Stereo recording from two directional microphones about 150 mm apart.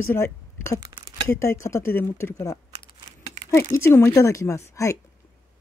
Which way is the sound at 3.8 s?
15° left (ahead or behind).